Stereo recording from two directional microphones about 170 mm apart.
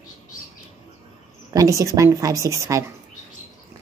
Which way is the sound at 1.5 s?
20° right (ahead or behind).